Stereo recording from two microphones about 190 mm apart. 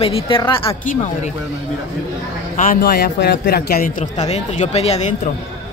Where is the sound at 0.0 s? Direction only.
30° left (ahead or behind).